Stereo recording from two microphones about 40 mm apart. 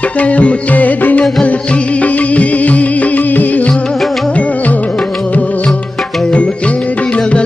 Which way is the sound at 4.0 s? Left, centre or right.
Centre.